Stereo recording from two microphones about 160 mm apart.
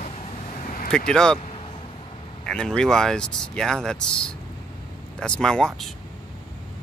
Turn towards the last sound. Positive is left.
turn(degrees=5)  # may be behind; listen again after turning